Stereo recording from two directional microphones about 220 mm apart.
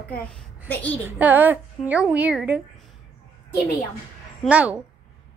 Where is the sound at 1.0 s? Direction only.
5° right (ahead or behind).